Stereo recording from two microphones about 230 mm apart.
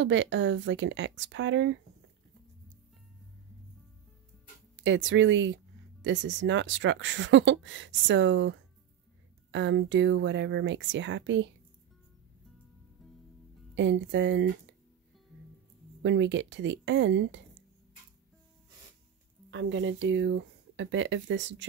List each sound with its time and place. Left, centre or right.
0.0 s speech: right
4.8 s speech: right
13.0 s music: centre
13.7 s speech: right
16.0 s speech: right
19.5 s speech: right